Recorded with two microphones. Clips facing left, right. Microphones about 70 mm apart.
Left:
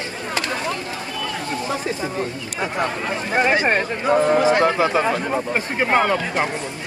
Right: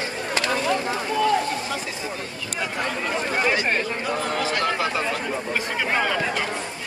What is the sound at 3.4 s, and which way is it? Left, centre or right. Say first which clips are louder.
Speech: left 7 dB; left.